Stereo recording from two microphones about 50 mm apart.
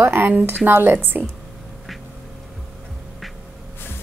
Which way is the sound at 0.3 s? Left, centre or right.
Right.